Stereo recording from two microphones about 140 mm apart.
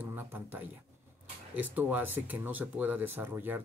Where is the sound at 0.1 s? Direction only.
15° right (ahead or behind).